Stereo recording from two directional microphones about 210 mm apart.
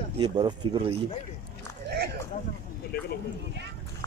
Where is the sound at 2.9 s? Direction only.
50° left (ahead or behind).